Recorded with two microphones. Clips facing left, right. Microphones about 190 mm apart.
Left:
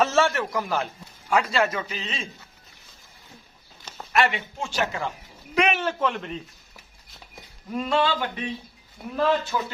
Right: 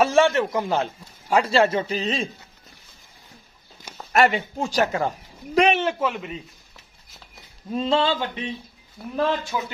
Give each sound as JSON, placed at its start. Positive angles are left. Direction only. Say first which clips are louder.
{"t": 0.0, "sound": "a man's voice", "louder": "right 4 dB", "side_deg": -15}
{"t": 4.1, "sound": "speech", "louder": "right 4 dB", "side_deg": -40}
{"t": 5.9, "sound": "speech", "louder": "even", "side_deg": -5}
{"t": 7.7, "sound": "a man's voice", "louder": "right 2 dB", "side_deg": -25}